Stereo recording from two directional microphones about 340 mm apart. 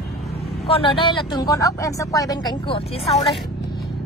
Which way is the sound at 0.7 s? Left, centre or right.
Centre.